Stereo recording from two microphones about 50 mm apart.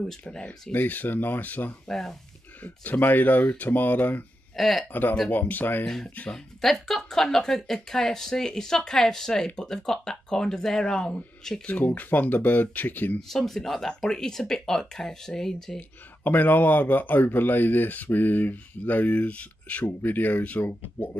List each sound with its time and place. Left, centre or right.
0.4 s speech: left
1.9 s speech: centre
2.6 s speech: left
4.6 s speech: centre
5.3 s speech: left
5.9 s speech: centre
11.8 s speech: left
13.3 s speech: centre
16.3 s speech: left
20.0 s speech: left